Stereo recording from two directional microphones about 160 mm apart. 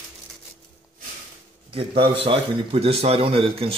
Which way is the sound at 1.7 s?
35° right (ahead or behind).